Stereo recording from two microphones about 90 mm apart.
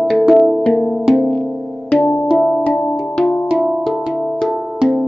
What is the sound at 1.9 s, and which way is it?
Music, 5° left (ahead or behind).